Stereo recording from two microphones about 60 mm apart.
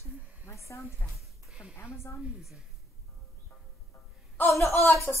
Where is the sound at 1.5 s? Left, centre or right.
Centre.